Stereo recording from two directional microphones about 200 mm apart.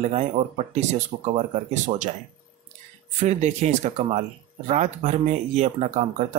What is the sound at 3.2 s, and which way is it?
Speech, 35° right (ahead or behind).